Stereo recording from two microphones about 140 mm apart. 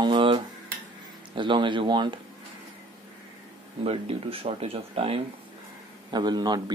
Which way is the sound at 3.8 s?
45° right (ahead or behind).